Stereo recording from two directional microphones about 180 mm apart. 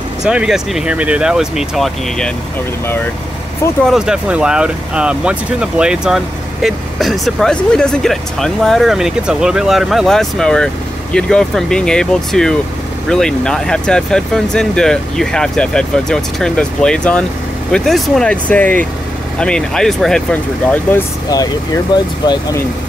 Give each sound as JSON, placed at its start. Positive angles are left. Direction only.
{"t": 0.2, "sound": "speech", "side_deg": -5}
{"t": 3.8, "sound": "speech", "side_deg": -5}
{"t": 21.9, "sound": "speech", "side_deg": 25}